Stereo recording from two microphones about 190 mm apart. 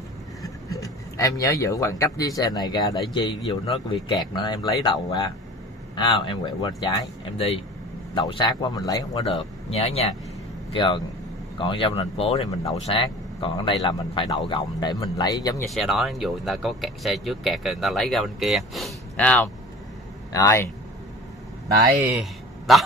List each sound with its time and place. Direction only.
0.4 s speech: 15° left (ahead or behind)
9.2 s speech: 30° left (ahead or behind)
15.7 s a man's voice: centre (ahead or behind)
21.7 s speech: 20° right (ahead or behind)
22.7 s speech: centre (ahead or behind)